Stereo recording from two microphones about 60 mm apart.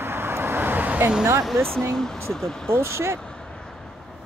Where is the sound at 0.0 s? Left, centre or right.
Right.